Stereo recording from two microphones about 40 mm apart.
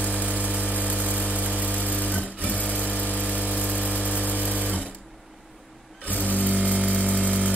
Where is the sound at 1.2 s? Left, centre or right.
Right.